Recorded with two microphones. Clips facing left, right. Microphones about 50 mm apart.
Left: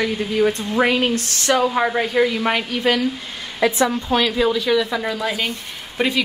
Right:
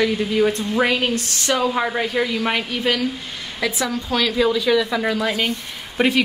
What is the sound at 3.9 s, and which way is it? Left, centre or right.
Speech, left.